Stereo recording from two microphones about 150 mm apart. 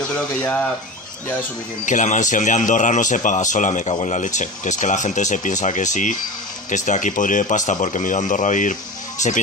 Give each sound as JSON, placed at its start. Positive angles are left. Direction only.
{"t": 0.0, "sound": "speech", "side_deg": 5}
{"t": 1.9, "sound": "speech", "side_deg": 55}